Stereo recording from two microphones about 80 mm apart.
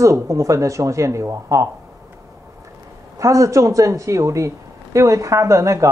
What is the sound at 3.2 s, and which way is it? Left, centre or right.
Speech, right.